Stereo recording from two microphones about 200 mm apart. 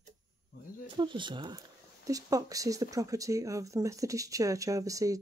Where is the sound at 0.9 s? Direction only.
25° right (ahead or behind).